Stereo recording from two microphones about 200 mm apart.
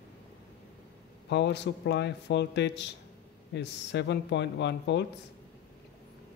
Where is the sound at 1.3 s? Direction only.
60° left (ahead or behind).